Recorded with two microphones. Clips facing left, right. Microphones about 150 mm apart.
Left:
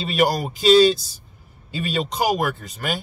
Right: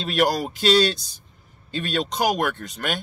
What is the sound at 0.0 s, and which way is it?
Speech, centre (ahead or behind).